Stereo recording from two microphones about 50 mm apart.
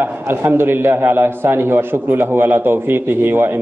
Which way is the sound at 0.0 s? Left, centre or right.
Right.